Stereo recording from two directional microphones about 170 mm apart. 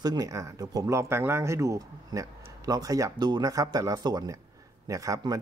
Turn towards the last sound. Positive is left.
turn(degrees=-20)  # may be behind; listen again after turning